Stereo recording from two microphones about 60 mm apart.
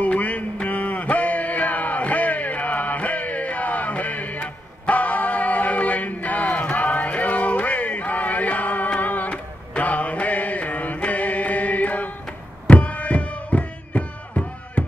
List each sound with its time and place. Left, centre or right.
0.0 s mantra: left
12.6 s music: left